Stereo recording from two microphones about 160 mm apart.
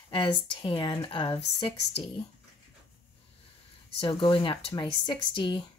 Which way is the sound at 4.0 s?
35° left (ahead or behind).